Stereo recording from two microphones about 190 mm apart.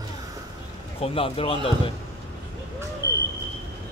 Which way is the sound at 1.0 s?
30° left (ahead or behind).